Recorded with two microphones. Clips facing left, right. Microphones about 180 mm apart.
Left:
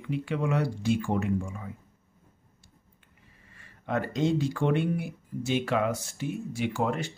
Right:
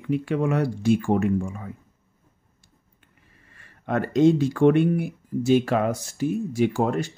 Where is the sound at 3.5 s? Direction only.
55° right (ahead or behind).